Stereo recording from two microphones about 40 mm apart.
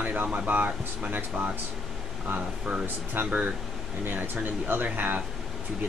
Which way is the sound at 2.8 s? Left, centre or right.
Right.